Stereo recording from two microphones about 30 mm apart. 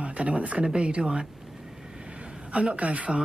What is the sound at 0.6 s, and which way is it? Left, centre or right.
Speech, right.